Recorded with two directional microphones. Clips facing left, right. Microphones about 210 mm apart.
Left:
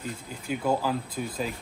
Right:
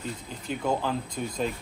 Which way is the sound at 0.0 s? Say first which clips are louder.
Even; 5° left (ahead or behind).